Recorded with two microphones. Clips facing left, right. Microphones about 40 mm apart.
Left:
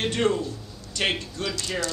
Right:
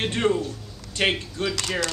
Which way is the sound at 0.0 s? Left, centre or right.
Right.